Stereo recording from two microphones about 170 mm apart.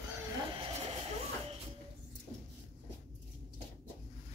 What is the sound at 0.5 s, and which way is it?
Vehicle, 35° right (ahead or behind).